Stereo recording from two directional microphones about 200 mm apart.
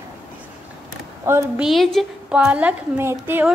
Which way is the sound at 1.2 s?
10° right (ahead or behind).